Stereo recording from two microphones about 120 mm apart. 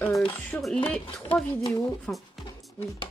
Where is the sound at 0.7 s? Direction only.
10° left (ahead or behind).